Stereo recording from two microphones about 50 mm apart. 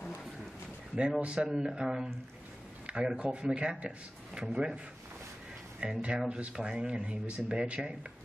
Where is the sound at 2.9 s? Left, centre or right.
Right.